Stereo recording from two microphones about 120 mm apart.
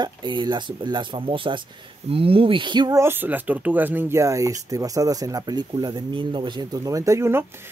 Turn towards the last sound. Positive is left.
turn(degrees=-20)  # may be behind; listen again after turning